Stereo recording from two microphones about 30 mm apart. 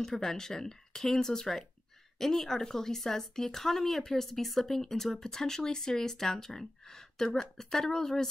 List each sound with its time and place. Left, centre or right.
0.0 s speech: centre